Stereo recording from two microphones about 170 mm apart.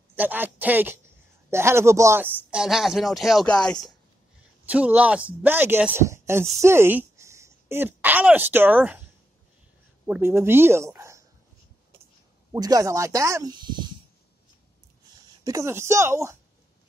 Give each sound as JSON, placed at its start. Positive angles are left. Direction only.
{"t": 0.1, "sound": "speech", "side_deg": -10}
{"t": 4.6, "sound": "a woman's voice", "side_deg": -10}
{"t": 10.0, "sound": "speech", "side_deg": -15}
{"t": 12.5, "sound": "speech", "side_deg": -20}
{"t": 15.4, "sound": "speech", "side_deg": -15}